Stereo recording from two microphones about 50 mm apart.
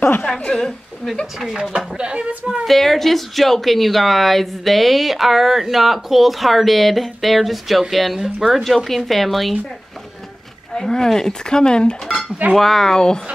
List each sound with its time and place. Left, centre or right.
0.4 s speech: centre
1.2 s speech: centre
2.0 s speech: centre
2.6 s speech: centre
10.7 s speech: centre
12.5 s speech: centre